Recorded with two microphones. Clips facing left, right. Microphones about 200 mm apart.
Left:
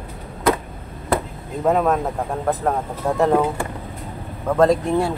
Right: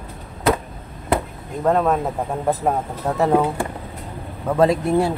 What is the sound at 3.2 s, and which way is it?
Speech, 5° right (ahead or behind).